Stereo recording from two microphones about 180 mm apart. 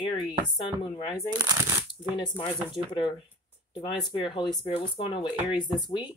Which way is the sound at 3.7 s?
30° left (ahead or behind).